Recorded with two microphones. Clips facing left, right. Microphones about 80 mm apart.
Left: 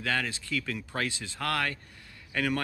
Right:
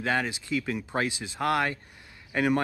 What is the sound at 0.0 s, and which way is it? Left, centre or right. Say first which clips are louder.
Speech: right 3 dB; right.